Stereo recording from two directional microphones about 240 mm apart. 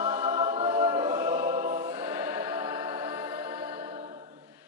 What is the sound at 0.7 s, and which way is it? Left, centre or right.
Choir, centre.